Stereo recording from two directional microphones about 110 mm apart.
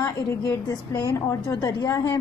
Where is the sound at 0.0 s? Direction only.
35° left (ahead or behind).